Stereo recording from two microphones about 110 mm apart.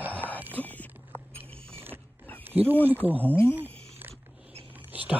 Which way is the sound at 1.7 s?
20° right (ahead or behind).